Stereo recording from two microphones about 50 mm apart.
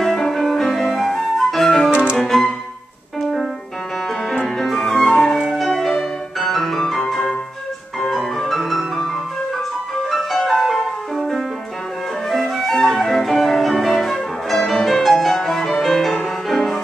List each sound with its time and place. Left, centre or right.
0.0 s flute: centre
1.9 s music: right
2.1 s music: centre
4.6 s flute: centre
8.1 s music: centre
10.1 s music: centre